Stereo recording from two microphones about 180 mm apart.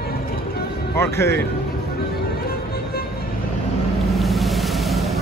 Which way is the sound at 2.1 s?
60° left (ahead or behind).